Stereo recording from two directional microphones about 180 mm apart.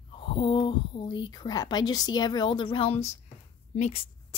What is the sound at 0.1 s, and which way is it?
A woman's voice, 30° left (ahead or behind).